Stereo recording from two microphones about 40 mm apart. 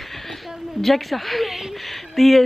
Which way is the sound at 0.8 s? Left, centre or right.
Centre.